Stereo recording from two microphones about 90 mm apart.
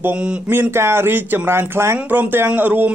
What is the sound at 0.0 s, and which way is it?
A man's voice, 25° right (ahead or behind).